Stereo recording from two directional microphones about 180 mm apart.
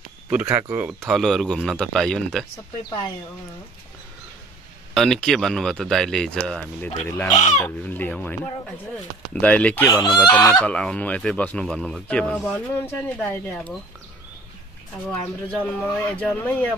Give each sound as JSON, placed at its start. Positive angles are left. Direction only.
{"t": 0.3, "sound": "speech", "side_deg": -10}
{"t": 1.0, "sound": "speech", "side_deg": 0}
{"t": 4.9, "sound": "speech", "side_deg": 0}
{"t": 9.8, "sound": "speech", "side_deg": 25}
{"t": 10.5, "sound": "speech", "side_deg": 5}
{"t": 15.0, "sound": "speech", "side_deg": 5}